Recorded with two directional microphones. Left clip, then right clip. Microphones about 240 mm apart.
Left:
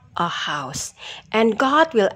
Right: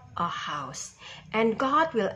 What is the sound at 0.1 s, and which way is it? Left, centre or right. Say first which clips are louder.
A woman's voice: left 7 dB; left.